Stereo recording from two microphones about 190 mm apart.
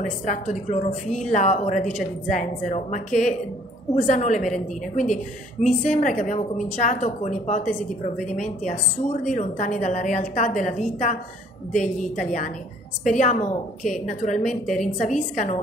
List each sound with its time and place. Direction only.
0.0 s a woman's voice: 40° left (ahead or behind)